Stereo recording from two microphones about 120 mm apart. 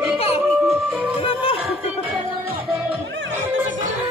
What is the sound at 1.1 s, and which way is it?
Music, 50° left (ahead or behind).